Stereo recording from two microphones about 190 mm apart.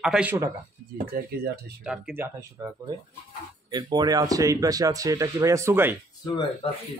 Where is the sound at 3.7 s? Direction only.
20° right (ahead or behind).